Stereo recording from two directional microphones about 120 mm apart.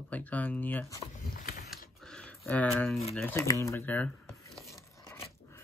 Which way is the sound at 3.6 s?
20° left (ahead or behind).